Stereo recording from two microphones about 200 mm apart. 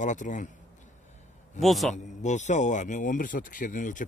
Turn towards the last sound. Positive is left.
turn(degrees=40)  # may be behind; listen again after turning